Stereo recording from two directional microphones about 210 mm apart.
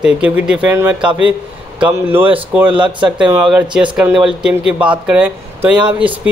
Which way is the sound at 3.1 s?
5° right (ahead or behind).